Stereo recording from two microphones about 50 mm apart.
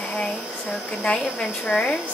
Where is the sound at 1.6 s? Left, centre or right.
Left.